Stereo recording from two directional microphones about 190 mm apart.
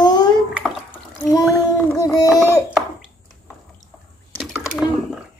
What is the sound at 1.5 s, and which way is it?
Boat, 15° left (ahead or behind).